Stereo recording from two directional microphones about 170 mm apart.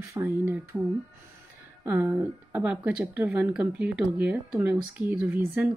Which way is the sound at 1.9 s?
15° right (ahead or behind).